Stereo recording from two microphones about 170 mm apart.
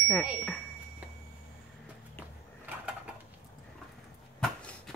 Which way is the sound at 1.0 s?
10° right (ahead or behind).